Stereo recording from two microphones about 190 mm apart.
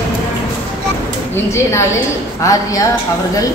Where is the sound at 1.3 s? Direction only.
15° left (ahead or behind).